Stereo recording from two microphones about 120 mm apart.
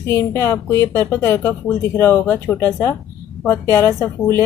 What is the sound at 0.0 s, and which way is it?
Speech, 20° left (ahead or behind).